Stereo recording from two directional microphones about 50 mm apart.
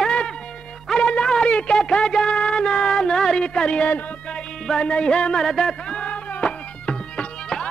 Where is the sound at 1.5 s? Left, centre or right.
Left.